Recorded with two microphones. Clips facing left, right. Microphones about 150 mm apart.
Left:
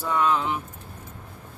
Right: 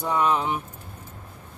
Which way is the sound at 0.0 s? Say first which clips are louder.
Right 1 dB; 20° right (ahead or behind).